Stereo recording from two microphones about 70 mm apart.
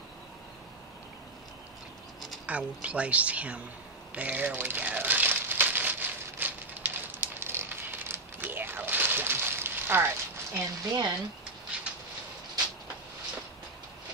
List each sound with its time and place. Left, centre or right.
2.4 s speech: centre
4.1 s crumpling: right
10.9 s speech: right